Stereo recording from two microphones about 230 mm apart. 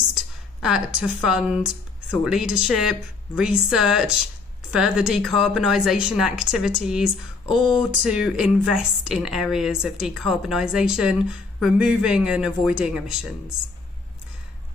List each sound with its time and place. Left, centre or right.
0.1 s speech: centre
7.4 s speech: left
7.9 s speech: centre